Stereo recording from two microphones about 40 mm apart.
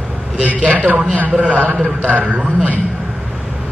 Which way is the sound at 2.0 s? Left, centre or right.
Right.